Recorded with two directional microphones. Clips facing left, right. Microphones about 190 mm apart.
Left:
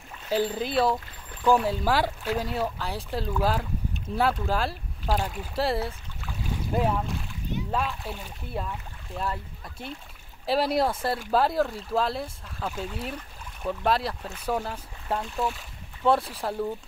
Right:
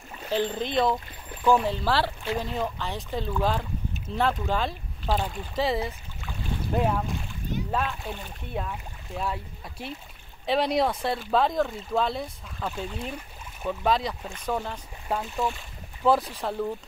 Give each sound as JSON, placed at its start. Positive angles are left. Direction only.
{"t": 0.3, "sound": "speech", "side_deg": 10}
{"t": 6.2, "sound": "boat", "side_deg": 0}
{"t": 7.7, "sound": "speech", "side_deg": 0}